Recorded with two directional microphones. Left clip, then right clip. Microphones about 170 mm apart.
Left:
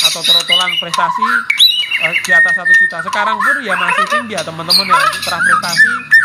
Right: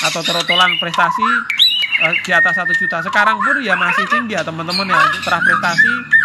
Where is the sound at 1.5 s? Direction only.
5° left (ahead or behind).